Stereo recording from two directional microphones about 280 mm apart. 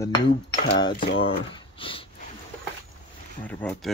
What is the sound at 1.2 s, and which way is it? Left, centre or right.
Speech, centre.